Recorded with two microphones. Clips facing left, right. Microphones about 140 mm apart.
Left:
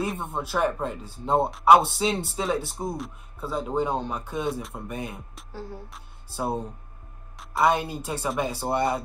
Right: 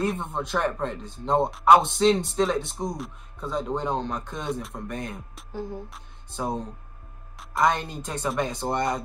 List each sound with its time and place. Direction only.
0.0 s a man's voice: 5° left (ahead or behind)
5.5 s music: 20° right (ahead or behind)
6.3 s a man's voice: 10° left (ahead or behind)